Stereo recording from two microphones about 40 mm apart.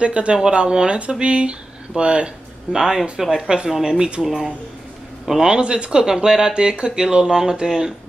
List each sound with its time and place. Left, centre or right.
0.0 s speech: right
2.7 s speech: centre
4.2 s speech: centre